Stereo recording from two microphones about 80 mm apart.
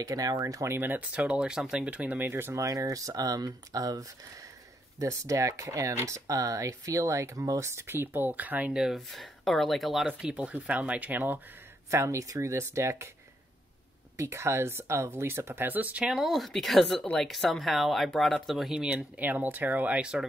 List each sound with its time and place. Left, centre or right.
0.0 s speech: right
0.7 s speech: right
2.2 s speech: right
2.5 s speech: right
4.9 s speech: right; by 8.7 s centre
8.7 s speech: centre
10.0 s speech: centre
11.9 s speech: right
14.1 s speech: right
16.0 s speech: centre
18.8 s speech: centre